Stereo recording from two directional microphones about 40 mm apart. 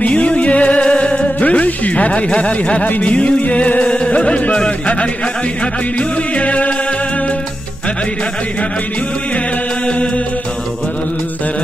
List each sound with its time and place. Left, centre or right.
0.0 s music: left
5.9 s music: left
9.8 s music: left